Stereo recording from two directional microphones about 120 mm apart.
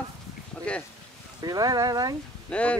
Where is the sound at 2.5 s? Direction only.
10° left (ahead or behind).